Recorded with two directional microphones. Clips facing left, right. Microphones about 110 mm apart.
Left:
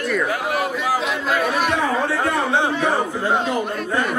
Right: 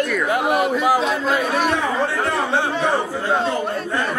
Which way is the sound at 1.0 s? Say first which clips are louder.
Right 1 dB; 30° right (ahead or behind).